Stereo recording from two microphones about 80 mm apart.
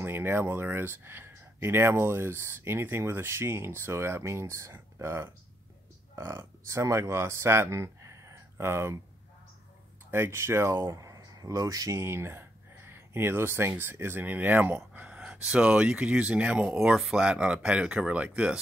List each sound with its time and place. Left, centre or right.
0.0 s speech: right
10.1 s speech: right
10.9 s speech: right
12.0 s speech: right; by 16.6 s centre
16.6 s speech: centre